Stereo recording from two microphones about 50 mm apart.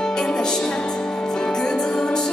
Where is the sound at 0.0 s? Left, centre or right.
Centre.